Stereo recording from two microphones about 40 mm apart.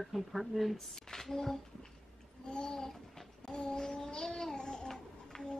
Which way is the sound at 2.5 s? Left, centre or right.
Left.